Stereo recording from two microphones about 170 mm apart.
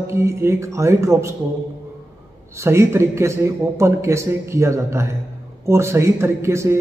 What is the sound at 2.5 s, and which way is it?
A man's voice, 15° right (ahead or behind).